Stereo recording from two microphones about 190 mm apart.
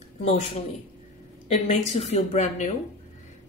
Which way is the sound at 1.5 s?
40° left (ahead or behind).